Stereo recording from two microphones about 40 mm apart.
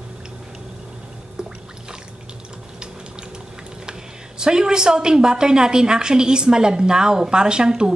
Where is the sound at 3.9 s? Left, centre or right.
Centre.